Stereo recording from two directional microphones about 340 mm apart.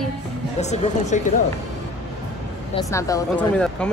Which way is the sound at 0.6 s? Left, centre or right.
Centre.